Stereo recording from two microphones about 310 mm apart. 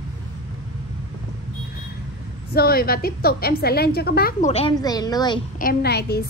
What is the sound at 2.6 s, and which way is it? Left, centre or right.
A woman's voice, left.